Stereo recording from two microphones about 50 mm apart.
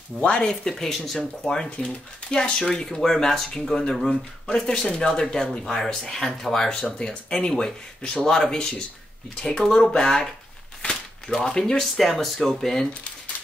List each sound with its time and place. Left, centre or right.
0.2 s speech: centre
0.5 s speech: centre
10.8 s a sound: centre
11.3 s speech: centre